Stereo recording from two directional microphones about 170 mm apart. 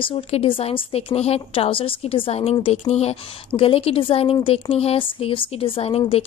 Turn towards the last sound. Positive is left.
turn(degrees=35)  # may be behind; listen again after turning